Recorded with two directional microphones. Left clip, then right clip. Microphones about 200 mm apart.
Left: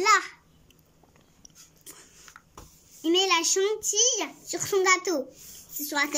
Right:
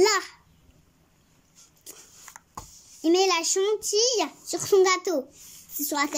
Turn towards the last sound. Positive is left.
turn(degrees=-30)  # may be behind; listen again after turning